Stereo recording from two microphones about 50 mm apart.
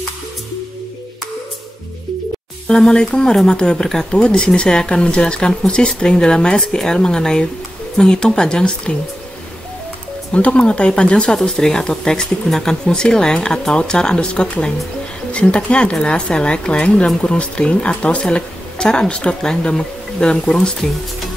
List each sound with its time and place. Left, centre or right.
2.7 s speech: centre
10.3 s speech: left